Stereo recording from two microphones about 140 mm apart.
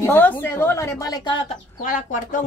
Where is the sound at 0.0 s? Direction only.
15° left (ahead or behind).